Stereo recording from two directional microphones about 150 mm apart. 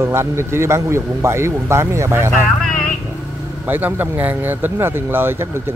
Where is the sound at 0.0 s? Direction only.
15° right (ahead or behind).